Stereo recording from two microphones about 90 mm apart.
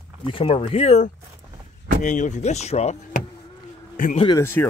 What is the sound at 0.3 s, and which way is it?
Speech, 90° left.